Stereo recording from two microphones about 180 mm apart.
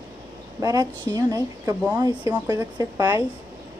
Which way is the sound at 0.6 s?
20° right (ahead or behind).